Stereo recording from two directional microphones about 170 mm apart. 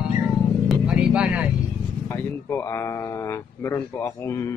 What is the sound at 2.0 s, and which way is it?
Speech, 15° left (ahead or behind).